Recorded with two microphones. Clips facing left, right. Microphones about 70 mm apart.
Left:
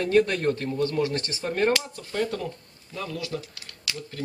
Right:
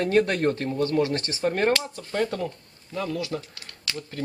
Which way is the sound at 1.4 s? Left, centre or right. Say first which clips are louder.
Right 1 dB; centre.